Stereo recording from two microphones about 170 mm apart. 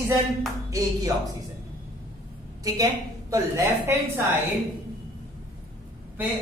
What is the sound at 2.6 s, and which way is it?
A woman's voice, 20° right (ahead or behind).